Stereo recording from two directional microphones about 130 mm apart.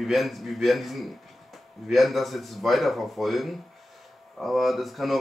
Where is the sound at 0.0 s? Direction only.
Centre (ahead or behind).